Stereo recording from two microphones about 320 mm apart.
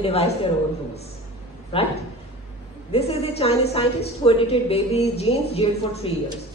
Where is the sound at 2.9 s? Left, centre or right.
Centre.